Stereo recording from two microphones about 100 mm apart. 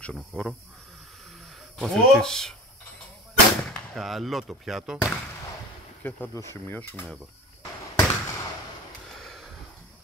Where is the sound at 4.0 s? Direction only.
Centre (ahead or behind).